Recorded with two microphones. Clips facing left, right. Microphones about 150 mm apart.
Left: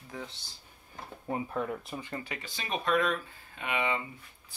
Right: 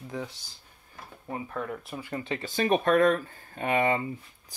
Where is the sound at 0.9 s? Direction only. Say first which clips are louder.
Left 2 dB; 20° left (ahead or behind).